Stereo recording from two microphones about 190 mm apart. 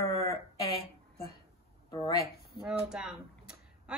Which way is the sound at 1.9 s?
20° left (ahead or behind).